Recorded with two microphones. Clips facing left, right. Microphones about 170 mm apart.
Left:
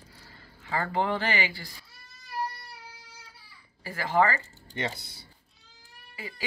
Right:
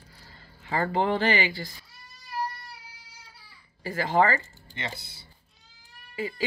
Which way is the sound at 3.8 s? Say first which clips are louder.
Right 2 dB; 25° right (ahead or behind).